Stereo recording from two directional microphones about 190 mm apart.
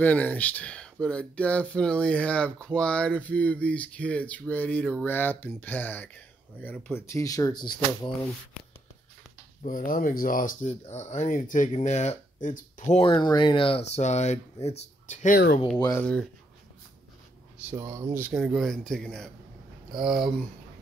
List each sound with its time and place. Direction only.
0.0 s speech: 10° left (ahead or behind)
9.6 s speech: 45° left (ahead or behind)
12.9 s speech: 25° left (ahead or behind)
16.0 s speech: 5° left (ahead or behind)
17.6 s speech: 15° right (ahead or behind)